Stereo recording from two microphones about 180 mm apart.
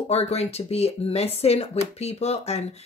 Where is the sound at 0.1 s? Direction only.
35° left (ahead or behind).